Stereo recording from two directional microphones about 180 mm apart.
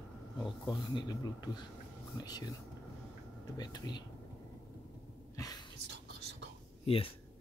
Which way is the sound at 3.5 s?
20° left (ahead or behind).